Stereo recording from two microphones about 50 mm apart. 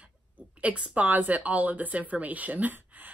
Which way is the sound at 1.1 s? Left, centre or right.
Right.